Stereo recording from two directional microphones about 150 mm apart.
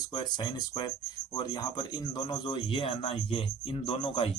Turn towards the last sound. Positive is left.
turn(degrees=35)  # may be behind; listen again after turning